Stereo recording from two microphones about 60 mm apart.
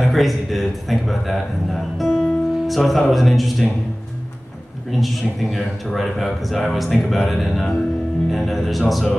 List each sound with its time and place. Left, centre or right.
0.1 s a man's voice: centre
4.9 s a man's voice: centre